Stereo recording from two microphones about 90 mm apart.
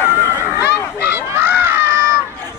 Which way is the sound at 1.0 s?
25° right (ahead or behind).